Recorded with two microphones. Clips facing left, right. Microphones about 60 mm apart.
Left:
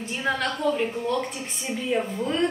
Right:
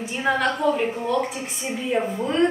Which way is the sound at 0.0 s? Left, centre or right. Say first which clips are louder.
Right 4 dB; centre.